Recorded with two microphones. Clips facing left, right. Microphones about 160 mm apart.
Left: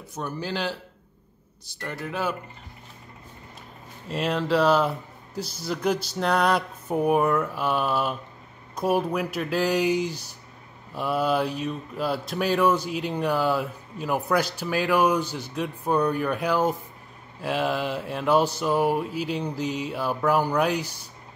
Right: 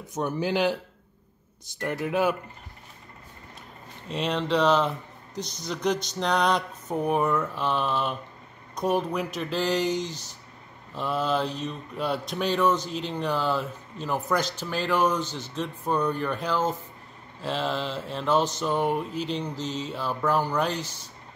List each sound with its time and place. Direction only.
0.1 s speech: 15° right (ahead or behind)
4.1 s speech: 5° left (ahead or behind)